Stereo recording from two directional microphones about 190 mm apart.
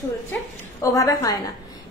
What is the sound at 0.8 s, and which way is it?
Speech, 15° left (ahead or behind).